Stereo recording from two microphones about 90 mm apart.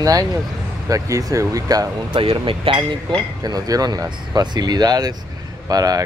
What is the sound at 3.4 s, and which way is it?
Speech, 45° right (ahead or behind).